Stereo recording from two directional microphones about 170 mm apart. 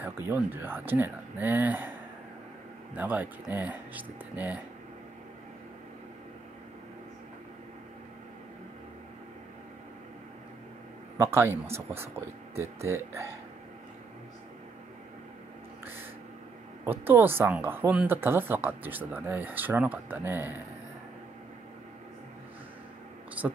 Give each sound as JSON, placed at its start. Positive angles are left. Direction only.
{"t": 0.0, "sound": "speech", "side_deg": -10}
{"t": 11.1, "sound": "speech", "side_deg": -15}
{"t": 16.8, "sound": "speech", "side_deg": -10}
{"t": 23.4, "sound": "speech", "side_deg": -10}